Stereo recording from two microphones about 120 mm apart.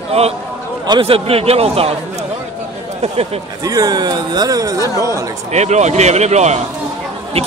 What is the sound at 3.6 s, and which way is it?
Speech, 30° right (ahead or behind).